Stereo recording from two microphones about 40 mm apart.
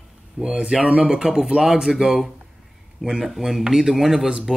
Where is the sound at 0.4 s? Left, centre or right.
Right.